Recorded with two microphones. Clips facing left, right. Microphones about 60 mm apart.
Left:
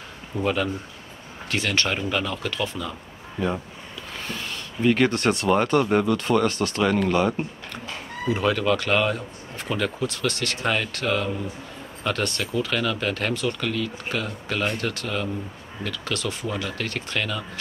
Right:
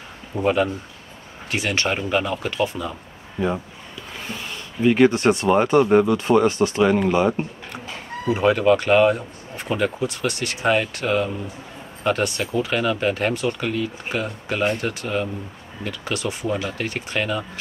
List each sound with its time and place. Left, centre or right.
0.4 s speech: centre